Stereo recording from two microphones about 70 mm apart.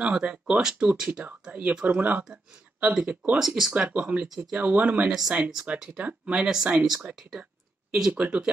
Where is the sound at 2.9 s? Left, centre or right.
Centre.